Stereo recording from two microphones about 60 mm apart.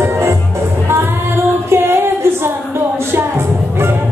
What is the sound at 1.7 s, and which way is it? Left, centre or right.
Music, right.